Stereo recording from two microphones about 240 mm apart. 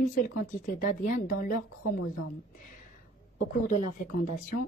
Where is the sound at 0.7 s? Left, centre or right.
Left.